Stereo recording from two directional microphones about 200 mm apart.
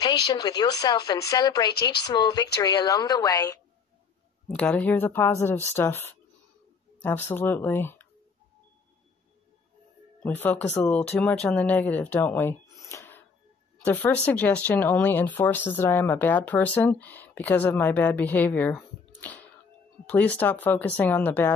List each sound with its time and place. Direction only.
0.0 s speech: 20° left (ahead or behind)
4.6 s speech: 5° left (ahead or behind)
10.2 s speech: 10° left (ahead or behind)